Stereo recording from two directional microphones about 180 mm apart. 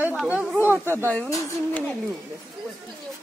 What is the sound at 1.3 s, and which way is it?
Speech, 15° left (ahead or behind).